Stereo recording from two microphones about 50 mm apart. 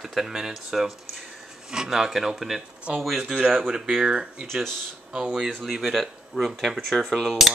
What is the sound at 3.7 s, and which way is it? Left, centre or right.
Speech, centre.